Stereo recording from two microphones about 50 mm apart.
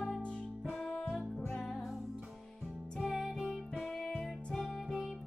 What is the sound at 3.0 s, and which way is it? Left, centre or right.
Music, centre.